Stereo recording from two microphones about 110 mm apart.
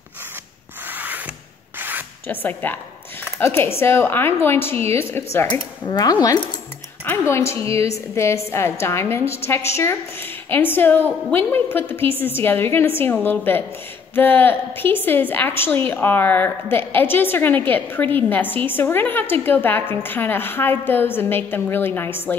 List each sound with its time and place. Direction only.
0.8 s wood: 15° right (ahead or behind)
1.8 s rub: 15° right (ahead or behind)
2.2 s a woman's voice: 15° left (ahead or behind)
5.9 s speech: 40° left (ahead or behind)
7.1 s a woman's voice: 25° left (ahead or behind)